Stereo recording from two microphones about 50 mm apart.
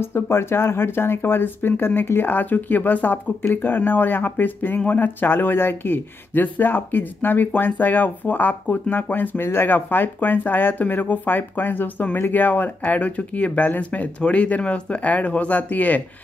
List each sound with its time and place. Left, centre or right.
0.0 s speech: left